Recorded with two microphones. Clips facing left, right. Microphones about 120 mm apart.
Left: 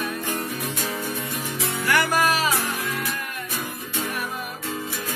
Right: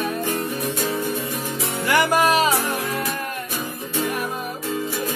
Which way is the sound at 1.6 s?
15° right (ahead or behind).